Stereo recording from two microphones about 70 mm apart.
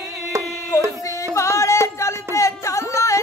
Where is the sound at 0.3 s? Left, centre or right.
Right.